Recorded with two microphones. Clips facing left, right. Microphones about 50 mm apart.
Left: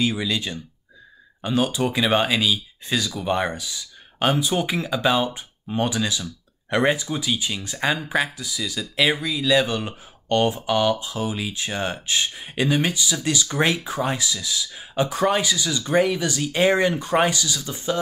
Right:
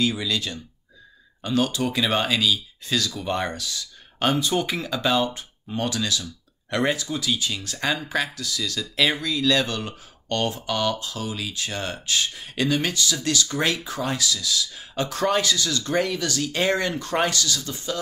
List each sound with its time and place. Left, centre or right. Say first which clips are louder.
0.0 s speech: left 1 dB; centre